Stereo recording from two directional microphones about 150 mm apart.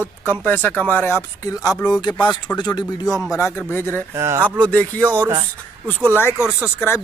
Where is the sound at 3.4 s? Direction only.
15° left (ahead or behind).